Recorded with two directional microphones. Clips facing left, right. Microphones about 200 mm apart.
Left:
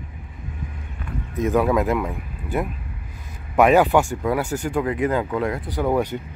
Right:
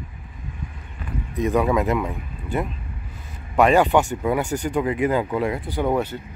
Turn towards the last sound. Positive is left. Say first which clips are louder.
# even
turn(degrees=0)  # may be behind; listen again after turning